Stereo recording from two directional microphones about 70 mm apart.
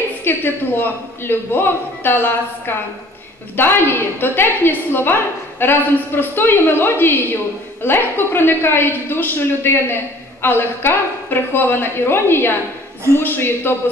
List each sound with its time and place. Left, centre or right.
0.2 s a woman's voice: left